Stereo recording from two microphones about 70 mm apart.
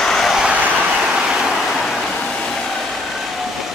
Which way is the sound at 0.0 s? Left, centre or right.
Centre.